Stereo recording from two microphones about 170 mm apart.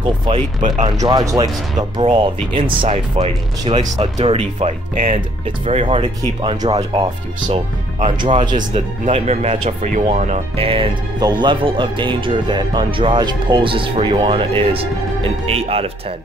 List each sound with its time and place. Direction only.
0.6 s speech: 50° right (ahead or behind)
0.8 s speech: 25° right (ahead or behind)
4.9 s speech: 55° right (ahead or behind)
5.7 s speech: 35° right (ahead or behind)
8.0 s speech: 30° right (ahead or behind)
9.0 s speech: 40° right (ahead or behind)